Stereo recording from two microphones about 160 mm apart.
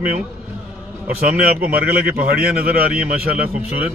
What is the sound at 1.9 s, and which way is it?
A man's voice, 70° right (ahead or behind).